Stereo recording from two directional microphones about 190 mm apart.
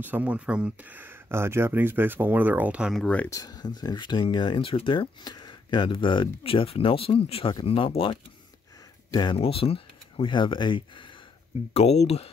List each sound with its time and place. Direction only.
0.0 s speech: 10° right (ahead or behind); by 12.3 s 35° left (ahead or behind)